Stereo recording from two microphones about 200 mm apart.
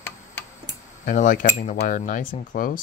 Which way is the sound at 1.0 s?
40° left (ahead or behind).